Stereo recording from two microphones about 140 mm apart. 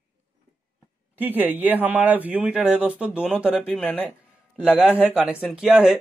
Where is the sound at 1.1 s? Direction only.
15° right (ahead or behind).